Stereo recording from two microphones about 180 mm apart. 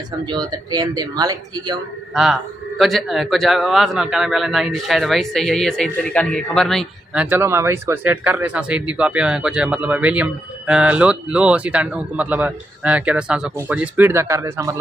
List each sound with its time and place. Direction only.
0.2 s speech: 25° right (ahead or behind)
2.8 s a man's voice: centre (ahead or behind)
7.2 s speech: 15° right (ahead or behind)